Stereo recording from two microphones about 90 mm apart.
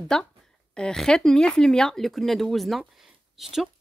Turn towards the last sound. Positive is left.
turn(degrees=-5)  # may be behind; listen again after turning